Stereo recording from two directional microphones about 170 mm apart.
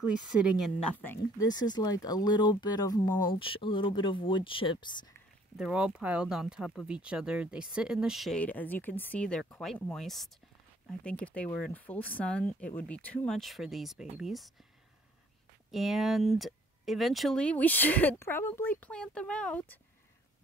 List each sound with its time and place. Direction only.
1.0 s speech: 20° left (ahead or behind)
5.6 s speech: 5° right (ahead or behind)
15.7 s speech: centre (ahead or behind)